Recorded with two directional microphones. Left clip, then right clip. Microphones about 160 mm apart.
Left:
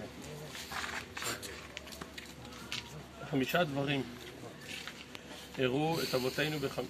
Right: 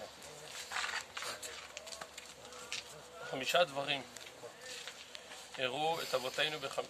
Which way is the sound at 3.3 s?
10° right (ahead or behind).